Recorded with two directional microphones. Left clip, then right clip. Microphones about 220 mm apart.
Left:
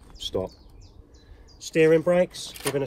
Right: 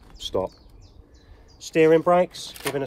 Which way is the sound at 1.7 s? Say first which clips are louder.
Right 2 dB; 25° right (ahead or behind).